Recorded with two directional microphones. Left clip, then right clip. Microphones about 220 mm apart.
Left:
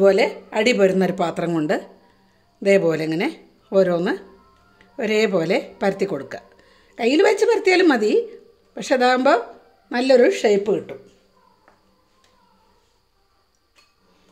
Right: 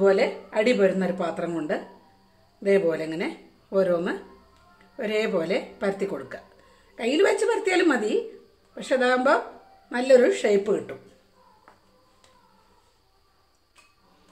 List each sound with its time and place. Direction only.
0.0 s speech: 45° left (ahead or behind); by 10.8 s 30° left (ahead or behind)